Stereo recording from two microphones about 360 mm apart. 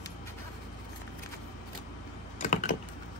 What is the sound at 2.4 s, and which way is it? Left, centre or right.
Computer keyboard, left.